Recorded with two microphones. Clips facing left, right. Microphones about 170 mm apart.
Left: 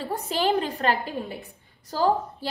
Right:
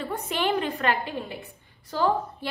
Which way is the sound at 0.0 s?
35° left (ahead or behind).